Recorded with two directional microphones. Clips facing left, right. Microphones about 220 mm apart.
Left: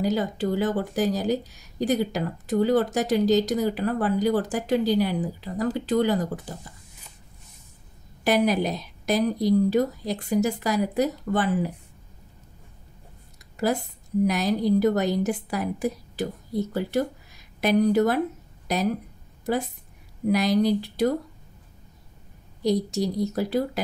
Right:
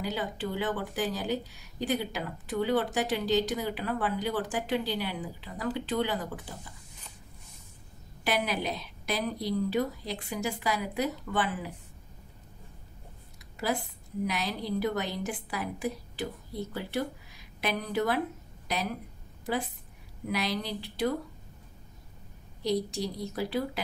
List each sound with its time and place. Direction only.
0.0 s speech: 40° left (ahead or behind)
8.2 s a woman's voice: 45° left (ahead or behind)
14.2 s a woman's voice: 45° left (ahead or behind)
22.6 s a woman's voice: 45° left (ahead or behind)